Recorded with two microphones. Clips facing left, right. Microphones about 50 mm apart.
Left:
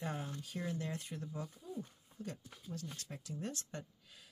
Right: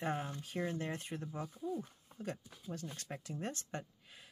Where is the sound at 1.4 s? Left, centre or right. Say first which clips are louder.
Right 5 dB; right.